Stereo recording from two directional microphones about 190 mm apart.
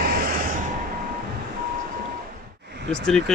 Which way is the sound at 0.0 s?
50° right (ahead or behind).